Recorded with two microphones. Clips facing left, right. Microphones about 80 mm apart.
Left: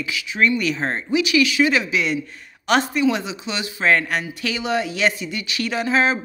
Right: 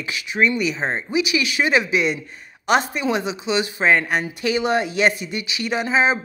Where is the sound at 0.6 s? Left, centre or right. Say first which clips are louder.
Even; centre.